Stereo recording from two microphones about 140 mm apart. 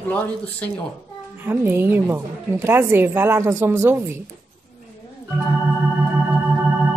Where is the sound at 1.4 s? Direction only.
15° right (ahead or behind).